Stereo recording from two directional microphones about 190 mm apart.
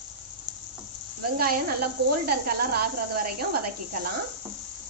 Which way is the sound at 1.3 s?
50° right (ahead or behind).